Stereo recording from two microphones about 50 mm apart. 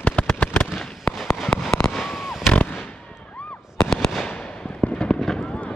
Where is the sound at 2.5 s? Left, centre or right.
Left.